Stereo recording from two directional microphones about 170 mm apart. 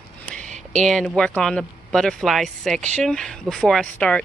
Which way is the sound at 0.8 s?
5° left (ahead or behind).